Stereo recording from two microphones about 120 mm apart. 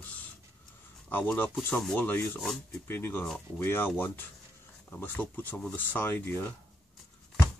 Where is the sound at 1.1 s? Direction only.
15° left (ahead or behind).